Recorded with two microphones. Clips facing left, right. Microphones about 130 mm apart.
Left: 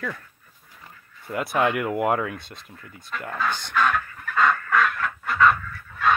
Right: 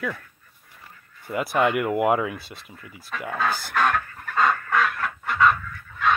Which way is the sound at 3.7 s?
40° right (ahead or behind).